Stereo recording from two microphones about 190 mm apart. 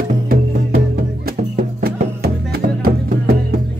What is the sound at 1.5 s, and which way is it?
Music, 50° right (ahead or behind).